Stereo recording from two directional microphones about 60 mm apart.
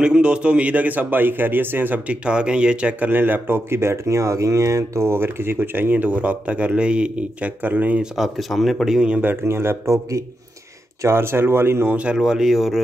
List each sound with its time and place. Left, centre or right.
0.0 s a man's voice: centre; by 2.0 s right
2.0 s a man's voice: centre
3.1 s a man's voice: right
8.2 s speech: centre
9.2 s speech: right
11.0 s speech: right
11.9 s a man's voice: right
12.2 s speech: centre